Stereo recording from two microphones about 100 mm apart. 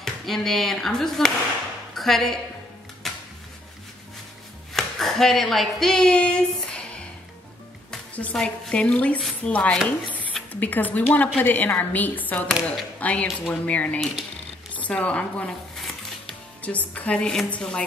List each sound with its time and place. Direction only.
0.0 s a woman's voice: 5° left (ahead or behind)
3.0 s music: 5° left (ahead or behind)
4.7 s a sound: 5° left (ahead or behind)
8.2 s a woman's voice: 10° left (ahead or behind)
15.7 s music: 5° left (ahead or behind)
16.6 s a woman's voice: 15° left (ahead or behind)